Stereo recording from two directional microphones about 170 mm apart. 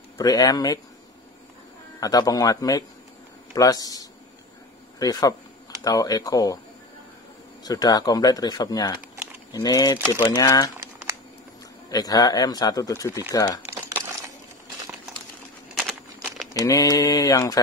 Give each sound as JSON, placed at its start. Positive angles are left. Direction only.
{"t": 0.2, "sound": "speech", "side_deg": 20}
{"t": 2.0, "sound": "speech", "side_deg": 20}
{"t": 7.6, "sound": "speech", "side_deg": 20}
{"t": 11.9, "sound": "speech", "side_deg": 20}
{"t": 15.8, "sound": "a sound", "side_deg": -5}
{"t": 16.6, "sound": "speech", "side_deg": 20}